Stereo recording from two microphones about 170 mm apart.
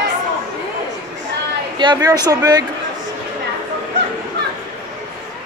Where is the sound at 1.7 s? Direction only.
25° right (ahead or behind).